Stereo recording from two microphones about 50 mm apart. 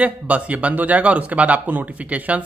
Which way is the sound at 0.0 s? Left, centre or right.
Right.